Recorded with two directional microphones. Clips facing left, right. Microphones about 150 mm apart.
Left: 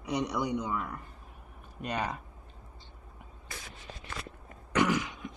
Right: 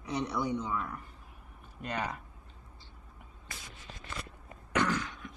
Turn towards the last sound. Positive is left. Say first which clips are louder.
# left 3 dB
turn(degrees=15)  # may be behind; listen again after turning